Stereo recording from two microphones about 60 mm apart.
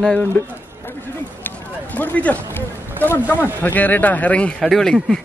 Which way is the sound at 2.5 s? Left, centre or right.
Left.